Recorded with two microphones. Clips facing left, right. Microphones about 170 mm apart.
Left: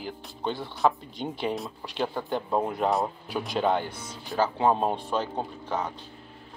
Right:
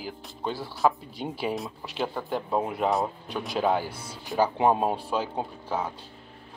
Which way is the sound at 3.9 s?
30° right (ahead or behind).